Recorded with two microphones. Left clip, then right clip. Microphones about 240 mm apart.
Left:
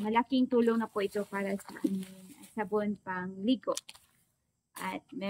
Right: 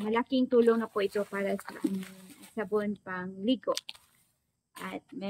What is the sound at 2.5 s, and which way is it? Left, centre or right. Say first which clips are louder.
Speech: right 1 dB; centre.